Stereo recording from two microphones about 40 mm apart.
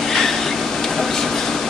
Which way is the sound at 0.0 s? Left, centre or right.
Centre.